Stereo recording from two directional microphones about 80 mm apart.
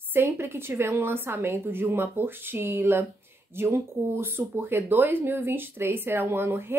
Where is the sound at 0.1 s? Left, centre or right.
Right.